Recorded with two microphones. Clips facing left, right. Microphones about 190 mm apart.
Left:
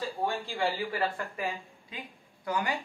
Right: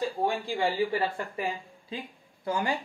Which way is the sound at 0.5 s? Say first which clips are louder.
Right 4 dB; 20° right (ahead or behind).